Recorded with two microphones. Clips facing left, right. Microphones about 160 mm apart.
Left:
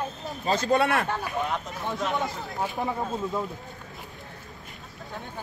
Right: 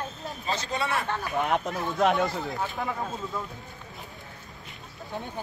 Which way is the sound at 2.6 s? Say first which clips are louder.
Left 7 dB; 20° left (ahead or behind).